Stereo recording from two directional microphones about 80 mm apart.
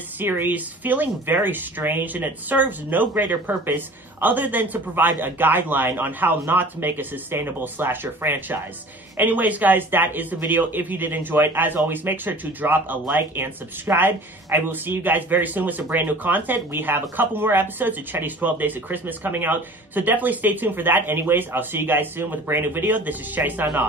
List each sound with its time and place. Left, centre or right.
0.2 s speech: right